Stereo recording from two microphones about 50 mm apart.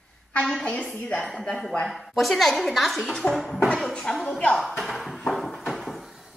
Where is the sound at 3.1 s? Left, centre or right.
Centre.